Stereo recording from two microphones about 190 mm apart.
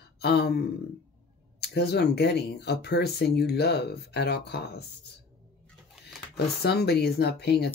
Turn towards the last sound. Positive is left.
turn(degrees=60)  # may be behind; listen again after turning